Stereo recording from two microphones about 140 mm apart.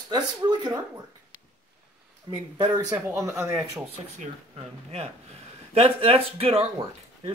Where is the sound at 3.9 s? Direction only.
45° right (ahead or behind).